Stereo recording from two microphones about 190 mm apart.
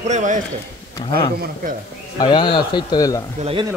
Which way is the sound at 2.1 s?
25° left (ahead or behind).